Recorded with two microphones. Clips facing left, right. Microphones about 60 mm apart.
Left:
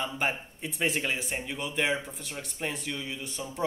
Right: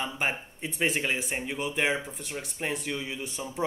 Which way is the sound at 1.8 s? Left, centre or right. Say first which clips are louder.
Even; centre.